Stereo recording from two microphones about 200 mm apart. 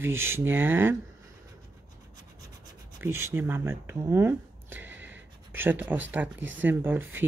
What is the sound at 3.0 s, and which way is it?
Speech, 10° right (ahead or behind).